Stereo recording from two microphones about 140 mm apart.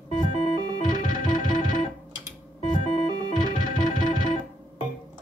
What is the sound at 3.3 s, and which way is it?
Music, 70° left (ahead or behind).